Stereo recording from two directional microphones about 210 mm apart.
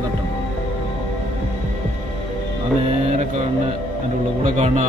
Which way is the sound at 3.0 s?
35° right (ahead or behind).